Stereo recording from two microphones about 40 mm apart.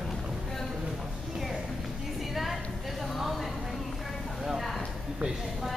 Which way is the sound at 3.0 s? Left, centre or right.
Centre.